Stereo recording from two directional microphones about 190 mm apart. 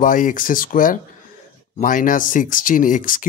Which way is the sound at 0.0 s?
45° left (ahead or behind).